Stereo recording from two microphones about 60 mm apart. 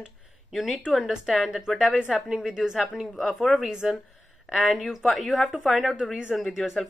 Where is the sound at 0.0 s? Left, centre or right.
Centre.